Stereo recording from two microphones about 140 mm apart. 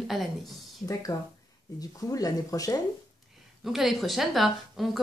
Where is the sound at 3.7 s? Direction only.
Centre (ahead or behind).